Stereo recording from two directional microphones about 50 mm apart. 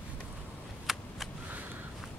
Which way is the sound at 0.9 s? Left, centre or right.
Centre.